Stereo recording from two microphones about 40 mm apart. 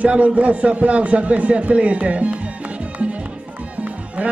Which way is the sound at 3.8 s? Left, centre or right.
Right.